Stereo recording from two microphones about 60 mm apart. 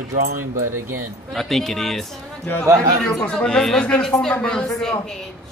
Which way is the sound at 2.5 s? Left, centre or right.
Left.